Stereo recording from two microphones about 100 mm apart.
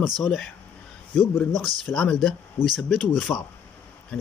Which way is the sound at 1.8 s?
10° left (ahead or behind).